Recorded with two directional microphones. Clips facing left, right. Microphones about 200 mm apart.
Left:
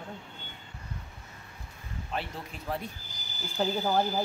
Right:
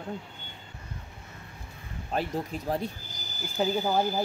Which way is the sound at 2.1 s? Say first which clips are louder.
Right 7 dB; 40° right (ahead or behind).